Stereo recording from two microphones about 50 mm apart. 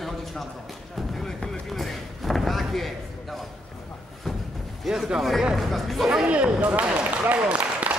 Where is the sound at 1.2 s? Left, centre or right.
Centre.